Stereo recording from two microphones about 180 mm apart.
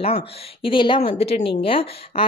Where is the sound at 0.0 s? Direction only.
30° left (ahead or behind).